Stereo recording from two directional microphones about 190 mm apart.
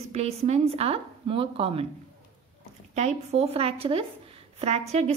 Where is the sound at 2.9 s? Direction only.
35° right (ahead or behind).